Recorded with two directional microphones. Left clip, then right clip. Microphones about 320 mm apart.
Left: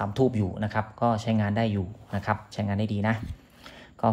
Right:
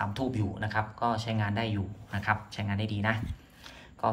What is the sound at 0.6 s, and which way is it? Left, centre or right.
A man's voice, centre.